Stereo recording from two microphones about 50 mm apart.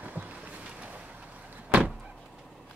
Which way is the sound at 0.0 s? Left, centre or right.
Right.